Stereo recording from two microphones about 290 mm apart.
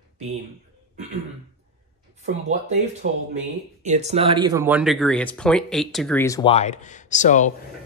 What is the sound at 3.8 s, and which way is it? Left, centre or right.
Speech, right.